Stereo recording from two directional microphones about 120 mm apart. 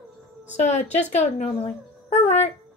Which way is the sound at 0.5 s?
75° left (ahead or behind).